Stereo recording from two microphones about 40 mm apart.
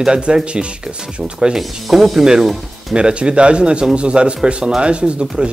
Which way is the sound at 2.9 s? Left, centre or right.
Right.